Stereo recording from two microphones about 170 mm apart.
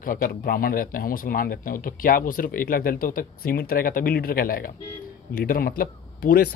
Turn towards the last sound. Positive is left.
turn(degrees=60)  # may be behind; listen again after turning